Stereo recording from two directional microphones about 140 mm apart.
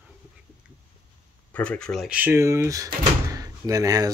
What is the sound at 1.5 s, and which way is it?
Speech, 10° left (ahead or behind).